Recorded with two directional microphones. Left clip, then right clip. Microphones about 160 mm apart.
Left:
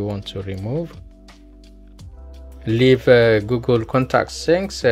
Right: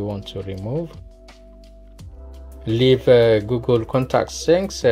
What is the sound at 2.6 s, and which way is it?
Speech, 20° left (ahead or behind).